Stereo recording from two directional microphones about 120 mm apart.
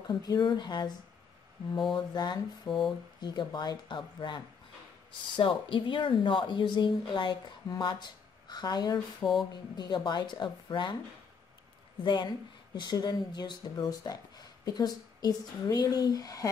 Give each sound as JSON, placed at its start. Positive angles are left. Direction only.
{"t": 0.0, "sound": "speech", "side_deg": 35}
{"t": 9.2, "sound": "speech", "side_deg": 0}
{"t": 9.5, "sound": "speech", "side_deg": 35}
{"t": 12.0, "sound": "speech", "side_deg": 40}